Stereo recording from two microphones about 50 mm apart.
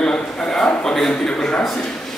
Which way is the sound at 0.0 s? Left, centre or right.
Centre.